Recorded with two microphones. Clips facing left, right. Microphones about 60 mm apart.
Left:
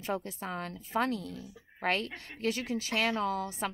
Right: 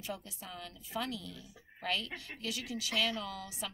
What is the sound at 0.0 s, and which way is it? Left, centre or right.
A woman's voice, left.